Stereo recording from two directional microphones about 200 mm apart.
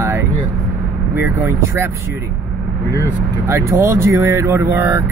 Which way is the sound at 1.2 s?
10° right (ahead or behind).